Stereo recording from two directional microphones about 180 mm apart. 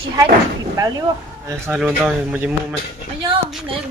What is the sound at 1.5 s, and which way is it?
Speech, 10° right (ahead or behind).